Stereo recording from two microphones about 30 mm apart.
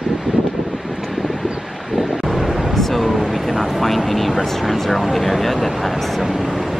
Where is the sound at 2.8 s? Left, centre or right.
Centre.